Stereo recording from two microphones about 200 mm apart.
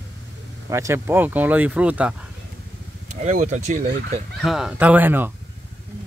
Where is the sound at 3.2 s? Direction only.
40° right (ahead or behind).